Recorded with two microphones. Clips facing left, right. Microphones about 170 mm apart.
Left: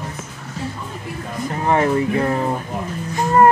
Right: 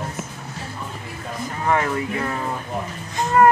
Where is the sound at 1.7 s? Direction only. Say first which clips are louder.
Left 5 dB; 30° left (ahead or behind).